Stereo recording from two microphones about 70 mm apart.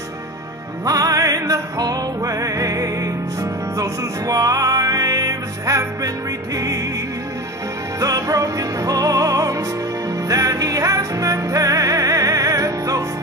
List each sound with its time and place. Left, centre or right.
0.8 s music: right
8.0 s music: right